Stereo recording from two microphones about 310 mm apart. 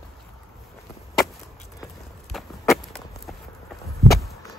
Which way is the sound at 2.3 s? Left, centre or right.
Centre.